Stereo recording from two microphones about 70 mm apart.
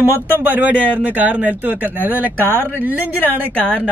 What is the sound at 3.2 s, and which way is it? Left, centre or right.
Speech, left.